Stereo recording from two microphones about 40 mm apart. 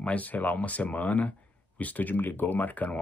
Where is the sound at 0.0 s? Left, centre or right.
Left.